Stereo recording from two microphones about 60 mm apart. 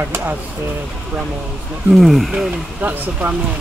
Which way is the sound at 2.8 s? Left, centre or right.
Right.